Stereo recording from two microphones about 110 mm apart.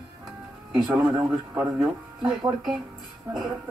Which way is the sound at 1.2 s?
25° right (ahead or behind).